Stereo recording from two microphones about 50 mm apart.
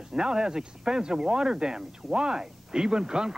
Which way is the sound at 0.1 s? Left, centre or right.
Centre.